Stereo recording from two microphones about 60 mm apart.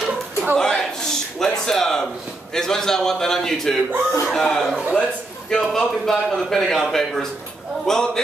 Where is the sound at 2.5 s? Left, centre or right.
Centre.